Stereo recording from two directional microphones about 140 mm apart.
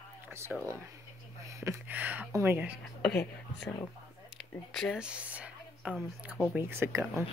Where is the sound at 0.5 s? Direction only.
5° right (ahead or behind).